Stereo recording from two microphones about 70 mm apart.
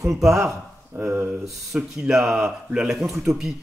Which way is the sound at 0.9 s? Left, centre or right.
Right.